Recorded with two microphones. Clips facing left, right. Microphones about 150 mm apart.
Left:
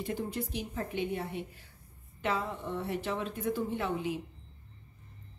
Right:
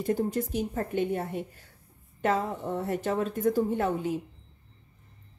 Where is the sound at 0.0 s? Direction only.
45° right (ahead or behind).